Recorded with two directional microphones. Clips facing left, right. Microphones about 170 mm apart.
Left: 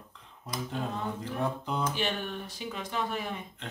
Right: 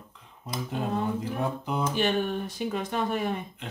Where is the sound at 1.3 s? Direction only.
5° right (ahead or behind).